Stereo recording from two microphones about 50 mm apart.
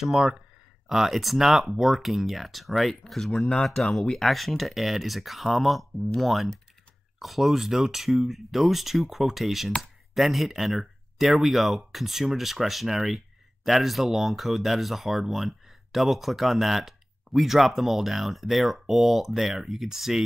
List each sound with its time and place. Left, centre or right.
0.0 s speech: centre
3.3 s speech: centre
4.2 s speech: centre